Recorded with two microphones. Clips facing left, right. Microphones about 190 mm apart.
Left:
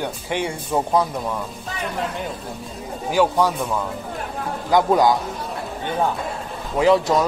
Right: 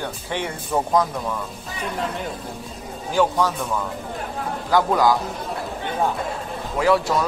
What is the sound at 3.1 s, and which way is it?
Speech, 10° left (ahead or behind).